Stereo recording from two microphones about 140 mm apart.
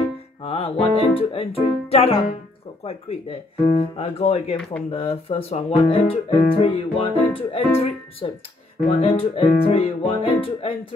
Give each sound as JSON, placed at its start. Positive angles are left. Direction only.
{"t": 0.4, "sound": "speech", "side_deg": 45}